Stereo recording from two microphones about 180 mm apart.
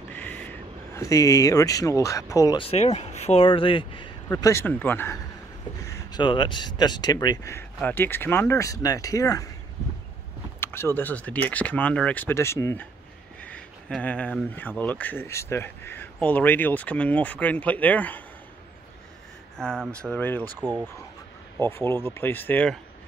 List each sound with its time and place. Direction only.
0.1 s speech: 10° left (ahead or behind)
2.6 s speech: 35° left (ahead or behind)
4.3 s speech: 15° left (ahead or behind)
6.1 s speech: 25° left (ahead or behind)
10.6 s speech: 15° left (ahead or behind)
19.5 s speech: 5° left (ahead or behind)
20.6 s speech: 20° right (ahead or behind)
21.5 s speech: 15° left (ahead or behind)